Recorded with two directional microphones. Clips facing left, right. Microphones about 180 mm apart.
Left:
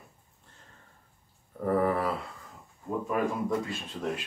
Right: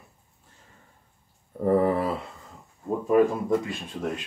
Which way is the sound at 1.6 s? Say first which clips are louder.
Right 5 dB; 25° right (ahead or behind).